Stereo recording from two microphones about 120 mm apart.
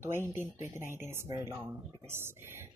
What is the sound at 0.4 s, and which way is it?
Speech, 20° right (ahead or behind).